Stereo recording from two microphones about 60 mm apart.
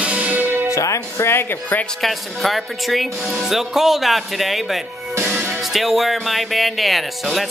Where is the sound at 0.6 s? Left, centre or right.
Left.